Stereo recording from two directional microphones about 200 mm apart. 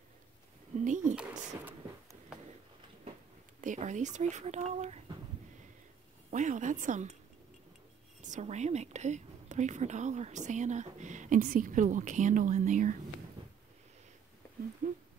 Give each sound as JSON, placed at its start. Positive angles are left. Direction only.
{"t": 0.8, "sound": "a woman's voice", "side_deg": -40}
{"t": 3.6, "sound": "a woman's voice", "side_deg": -40}
{"t": 6.3, "sound": "a woman's voice", "side_deg": -40}
{"t": 8.2, "sound": "a woman's voice", "side_deg": -35}
{"t": 14.8, "sound": "a sound", "side_deg": -40}